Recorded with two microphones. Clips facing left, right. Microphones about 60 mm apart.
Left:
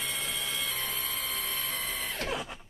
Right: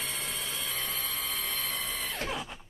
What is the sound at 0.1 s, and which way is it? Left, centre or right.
Music, right.